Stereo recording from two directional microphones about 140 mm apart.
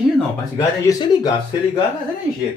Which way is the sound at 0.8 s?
30° left (ahead or behind).